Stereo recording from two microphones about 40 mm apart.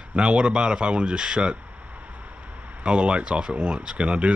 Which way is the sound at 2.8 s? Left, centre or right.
Right.